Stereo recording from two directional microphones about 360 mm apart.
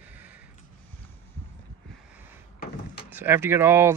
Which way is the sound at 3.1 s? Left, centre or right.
Centre.